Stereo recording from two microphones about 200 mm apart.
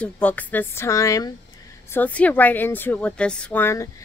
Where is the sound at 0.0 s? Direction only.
5° left (ahead or behind).